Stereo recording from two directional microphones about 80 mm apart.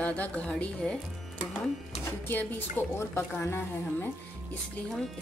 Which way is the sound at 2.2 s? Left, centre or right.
Left.